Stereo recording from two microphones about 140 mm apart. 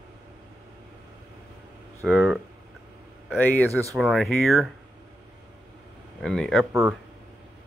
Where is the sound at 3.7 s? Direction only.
20° right (ahead or behind).